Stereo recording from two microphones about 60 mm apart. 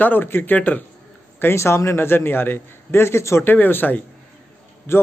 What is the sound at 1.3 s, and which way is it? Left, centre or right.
A man's voice, left.